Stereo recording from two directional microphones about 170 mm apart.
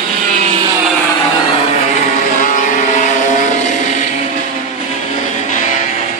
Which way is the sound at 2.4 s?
50° left (ahead or behind).